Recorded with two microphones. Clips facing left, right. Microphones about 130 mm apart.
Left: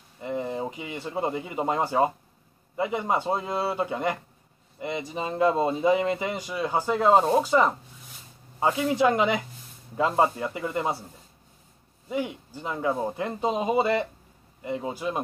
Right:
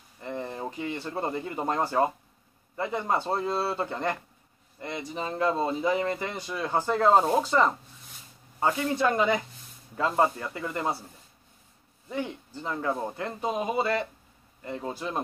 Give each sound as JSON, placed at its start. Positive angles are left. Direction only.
{"t": 0.2, "sound": "speech", "side_deg": 10}
{"t": 12.1, "sound": "speech", "side_deg": 10}